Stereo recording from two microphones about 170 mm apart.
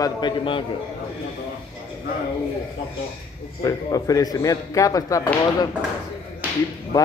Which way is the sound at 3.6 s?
20° left (ahead or behind).